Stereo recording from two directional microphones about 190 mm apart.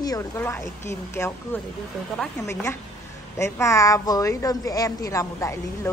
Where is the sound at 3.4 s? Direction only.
15° left (ahead or behind).